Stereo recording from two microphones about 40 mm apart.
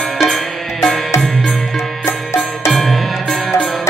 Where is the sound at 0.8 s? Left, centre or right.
Centre.